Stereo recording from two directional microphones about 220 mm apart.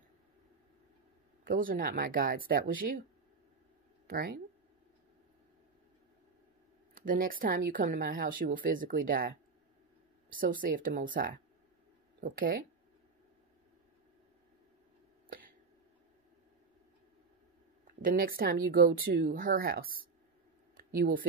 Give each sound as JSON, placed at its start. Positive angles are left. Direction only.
{"t": 1.4, "sound": "speech", "side_deg": -40}
{"t": 4.1, "sound": "speech", "side_deg": -45}
{"t": 7.1, "sound": "speech", "side_deg": -40}
{"t": 10.3, "sound": "speech", "side_deg": -40}
{"t": 15.2, "sound": "a sound", "side_deg": -40}
{"t": 18.0, "sound": "speech", "side_deg": -40}